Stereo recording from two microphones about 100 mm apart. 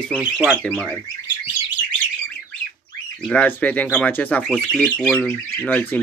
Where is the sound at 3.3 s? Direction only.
15° left (ahead or behind).